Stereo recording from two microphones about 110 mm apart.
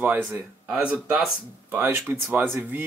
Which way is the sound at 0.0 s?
20° right (ahead or behind).